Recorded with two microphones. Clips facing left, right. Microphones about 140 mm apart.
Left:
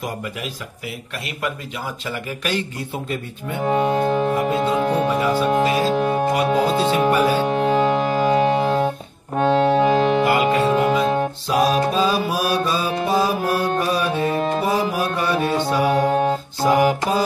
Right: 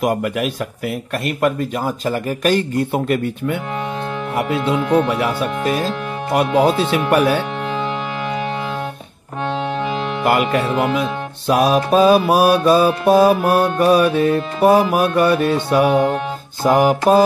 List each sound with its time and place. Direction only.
0.0 s speech: 65° right (ahead or behind)
2.0 s speech: 45° right (ahead or behind); by 3.5 s 65° right (ahead or behind)
3.6 s music: 40° left (ahead or behind)
4.3 s music: 70° right (ahead or behind)
4.6 s speech: 75° right (ahead or behind)
5.9 s music: 40° left (ahead or behind)
6.3 s mantra: 65° right (ahead or behind)
7.1 s speech: 65° right (ahead or behind)
7.4 s music: 40° left (ahead or behind)
10.2 s music: 60° right (ahead or behind)
11.4 s mantra: 60° right (ahead or behind)
16.6 s speech: 50° right (ahead or behind)